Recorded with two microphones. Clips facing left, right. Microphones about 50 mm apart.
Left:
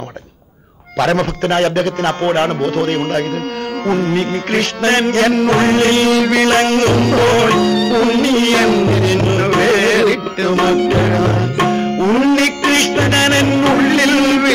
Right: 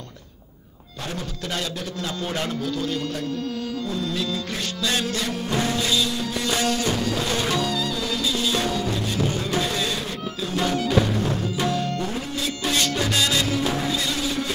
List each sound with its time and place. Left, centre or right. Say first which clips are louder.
0.9 s a man's voice: left 18 dB; left
1.4 s speech: left 13 dB; left
3.8 s music: left 14 dB; left
6.1 s music: left 14 dB; left
8.1 s music: left 12 dB; left